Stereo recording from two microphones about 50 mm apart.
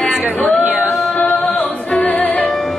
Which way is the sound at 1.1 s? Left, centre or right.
Left.